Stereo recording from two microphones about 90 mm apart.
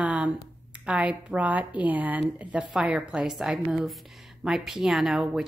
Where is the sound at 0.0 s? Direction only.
15° right (ahead or behind).